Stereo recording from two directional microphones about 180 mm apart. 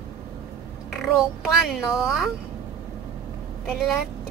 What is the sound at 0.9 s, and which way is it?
Speech, centre (ahead or behind).